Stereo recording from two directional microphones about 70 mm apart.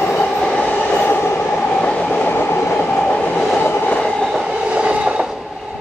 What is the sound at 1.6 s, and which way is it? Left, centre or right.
Train, centre.